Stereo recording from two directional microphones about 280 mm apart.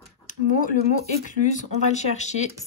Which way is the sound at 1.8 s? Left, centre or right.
Left.